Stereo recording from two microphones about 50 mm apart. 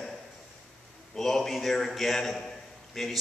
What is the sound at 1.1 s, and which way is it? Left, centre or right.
A man's voice, centre.